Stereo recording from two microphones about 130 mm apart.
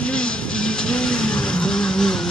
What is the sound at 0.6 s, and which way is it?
Vehicle, 5° left (ahead or behind).